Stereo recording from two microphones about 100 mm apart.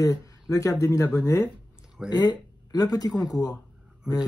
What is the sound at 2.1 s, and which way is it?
Speech, 40° left (ahead or behind).